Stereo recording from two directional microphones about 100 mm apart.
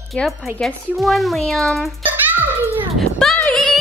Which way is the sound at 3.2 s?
10° left (ahead or behind).